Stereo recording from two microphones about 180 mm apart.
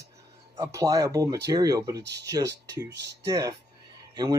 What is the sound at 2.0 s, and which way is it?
Speech, 70° right (ahead or behind).